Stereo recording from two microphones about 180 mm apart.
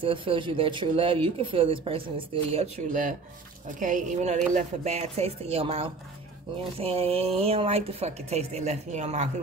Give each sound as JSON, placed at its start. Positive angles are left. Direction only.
{"t": 0.0, "sound": "a woman's voice", "side_deg": -30}